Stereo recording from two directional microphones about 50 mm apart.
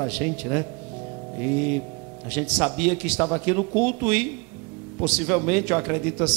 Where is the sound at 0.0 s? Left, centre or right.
Right.